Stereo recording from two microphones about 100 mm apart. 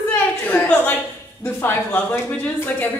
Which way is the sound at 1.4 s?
20° left (ahead or behind).